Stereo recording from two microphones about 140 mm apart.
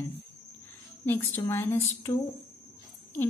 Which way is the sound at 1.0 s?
15° left (ahead or behind).